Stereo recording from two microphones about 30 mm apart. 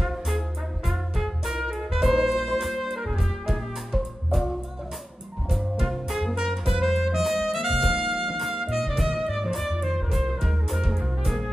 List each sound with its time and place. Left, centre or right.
0.0 s music: centre